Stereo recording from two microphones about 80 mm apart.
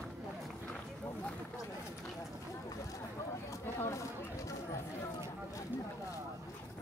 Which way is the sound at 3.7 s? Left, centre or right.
Left.